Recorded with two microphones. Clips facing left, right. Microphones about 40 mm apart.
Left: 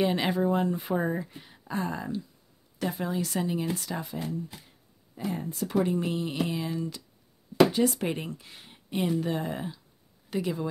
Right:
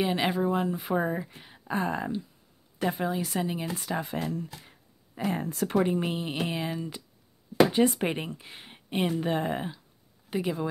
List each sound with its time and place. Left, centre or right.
0.0 s speech: centre
1.7 s speech: right
3.0 s a woman's voice: centre
3.7 s speech: right
4.2 s speech: right
5.9 s speech: right
10.3 s a woman's voice: centre